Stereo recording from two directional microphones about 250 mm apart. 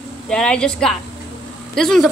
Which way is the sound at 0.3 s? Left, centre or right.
Centre.